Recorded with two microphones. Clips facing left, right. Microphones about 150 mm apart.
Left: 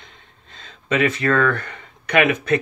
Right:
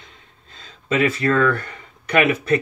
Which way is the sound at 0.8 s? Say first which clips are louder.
Even; 35° right (ahead or behind).